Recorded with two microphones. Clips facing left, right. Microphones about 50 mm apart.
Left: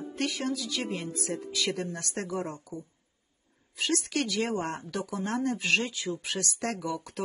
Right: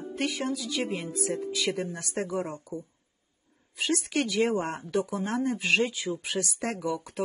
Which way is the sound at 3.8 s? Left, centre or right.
Centre.